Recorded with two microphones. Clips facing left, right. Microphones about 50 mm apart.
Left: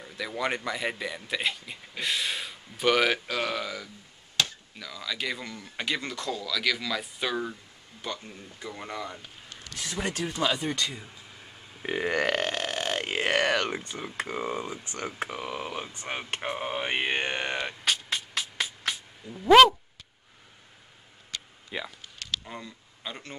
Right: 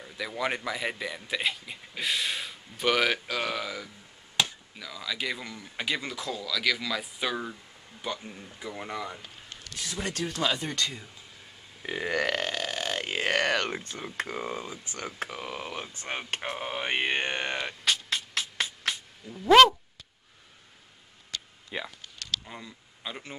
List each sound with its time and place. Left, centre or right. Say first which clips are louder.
0.0 s a man's voice: left 1 dB; centre
4.4 s chop: even; centre
4.7 s a man's voice: even; centre
9.8 s speech: left 2 dB; left
12.4 s burping: left 2 dB; left; by 13.8 s centre
13.9 s a man's voice: left 1 dB; centre
14.8 s speech: left 2 dB; left
15.0 s speech: left 2 dB; centre
16.3 s a sound: left 2 dB; centre
21.6 s speech: left 1 dB; centre